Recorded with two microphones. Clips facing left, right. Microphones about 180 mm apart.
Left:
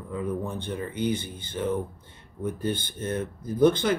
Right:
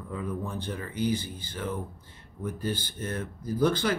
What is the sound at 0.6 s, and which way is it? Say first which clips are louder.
Speech: left 2 dB; 25° left (ahead or behind).